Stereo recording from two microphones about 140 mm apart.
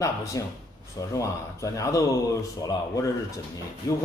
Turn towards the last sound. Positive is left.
turn(degrees=20)  # may be behind; listen again after turning